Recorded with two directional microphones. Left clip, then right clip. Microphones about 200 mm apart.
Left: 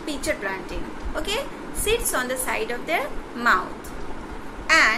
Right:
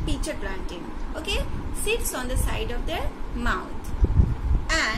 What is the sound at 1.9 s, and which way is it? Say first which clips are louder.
A woman's voice: left 4 dB; 15° right (ahead or behind).